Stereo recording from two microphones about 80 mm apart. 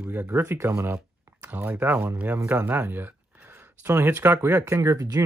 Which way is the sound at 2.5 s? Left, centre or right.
Right.